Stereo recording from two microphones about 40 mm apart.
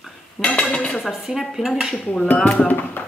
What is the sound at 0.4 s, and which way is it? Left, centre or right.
Dishes, left.